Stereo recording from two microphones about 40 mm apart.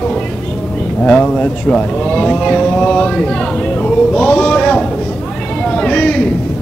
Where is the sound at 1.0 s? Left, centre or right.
Centre.